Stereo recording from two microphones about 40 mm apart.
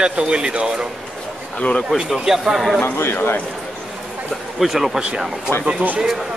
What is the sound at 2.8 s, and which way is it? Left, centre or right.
Speech, left.